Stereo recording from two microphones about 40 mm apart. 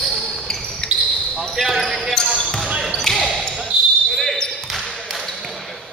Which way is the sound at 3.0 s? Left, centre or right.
Centre.